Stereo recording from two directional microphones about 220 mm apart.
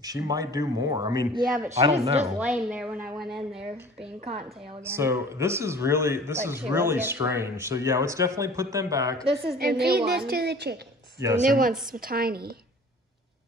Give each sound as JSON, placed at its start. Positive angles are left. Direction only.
{"t": 0.0, "sound": "speech", "side_deg": -15}
{"t": 2.3, "sound": "speech", "side_deg": -5}
{"t": 4.8, "sound": "speech", "side_deg": -10}
{"t": 9.6, "sound": "a woman's voice", "side_deg": -45}
{"t": 11.4, "sound": "a woman's voice", "side_deg": -40}